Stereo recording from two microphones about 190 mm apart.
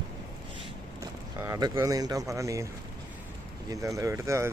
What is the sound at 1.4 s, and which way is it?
Speech, 20° right (ahead or behind).